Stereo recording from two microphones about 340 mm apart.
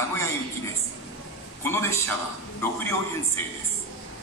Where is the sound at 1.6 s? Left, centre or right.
Centre.